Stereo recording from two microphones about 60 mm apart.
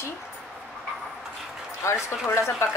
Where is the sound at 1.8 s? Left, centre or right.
Left.